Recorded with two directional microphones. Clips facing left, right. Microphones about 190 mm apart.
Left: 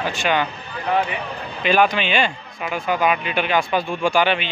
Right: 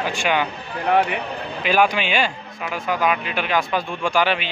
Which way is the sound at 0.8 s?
60° right (ahead or behind).